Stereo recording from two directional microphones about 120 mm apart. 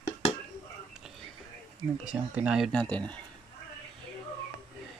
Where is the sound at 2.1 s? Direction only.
10° right (ahead or behind).